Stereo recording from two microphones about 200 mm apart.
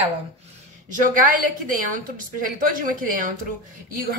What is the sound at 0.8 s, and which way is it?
A woman's voice, 40° right (ahead or behind).